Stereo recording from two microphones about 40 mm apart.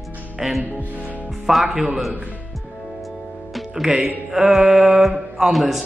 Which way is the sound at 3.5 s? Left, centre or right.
Centre.